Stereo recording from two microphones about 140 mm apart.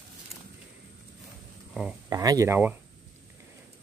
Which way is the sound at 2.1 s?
25° right (ahead or behind).